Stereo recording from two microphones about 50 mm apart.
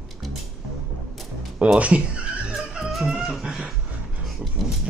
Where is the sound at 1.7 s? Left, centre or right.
Right.